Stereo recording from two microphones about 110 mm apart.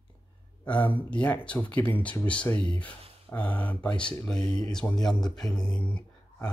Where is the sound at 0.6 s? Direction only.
15° left (ahead or behind).